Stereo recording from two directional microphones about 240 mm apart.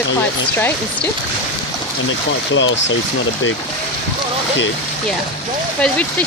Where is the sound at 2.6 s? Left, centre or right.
Left.